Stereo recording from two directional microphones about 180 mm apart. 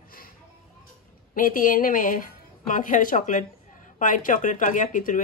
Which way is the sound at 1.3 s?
50° left (ahead or behind).